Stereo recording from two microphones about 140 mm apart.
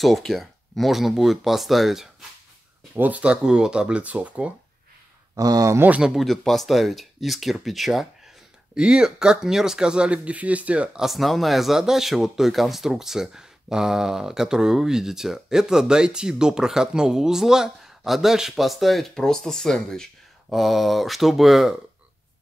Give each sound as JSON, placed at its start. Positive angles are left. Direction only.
{"t": 0.0, "sound": "speech", "side_deg": 0}
{"t": 5.3, "sound": "speech", "side_deg": -25}
{"t": 5.9, "sound": "speech", "side_deg": -5}